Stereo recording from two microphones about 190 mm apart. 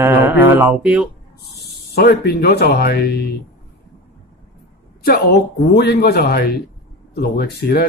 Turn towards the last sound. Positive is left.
turn(degrees=55)  # may be behind; listen again after turning